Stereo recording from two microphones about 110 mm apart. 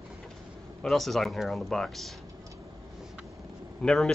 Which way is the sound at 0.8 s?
Centre (ahead or behind).